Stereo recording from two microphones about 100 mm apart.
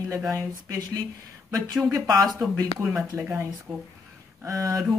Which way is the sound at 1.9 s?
35° right (ahead or behind).